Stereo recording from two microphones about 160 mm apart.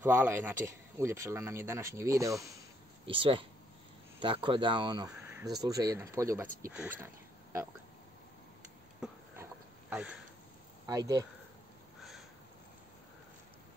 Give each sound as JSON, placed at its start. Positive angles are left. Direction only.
{"t": 0.0, "sound": "speech", "side_deg": -15}
{"t": 3.1, "sound": "speech", "side_deg": -35}
{"t": 5.2, "sound": "a sound", "side_deg": -10}
{"t": 5.5, "sound": "speech", "side_deg": -20}
{"t": 9.0, "sound": "a sound", "side_deg": -5}
{"t": 10.9, "sound": "speech", "side_deg": -25}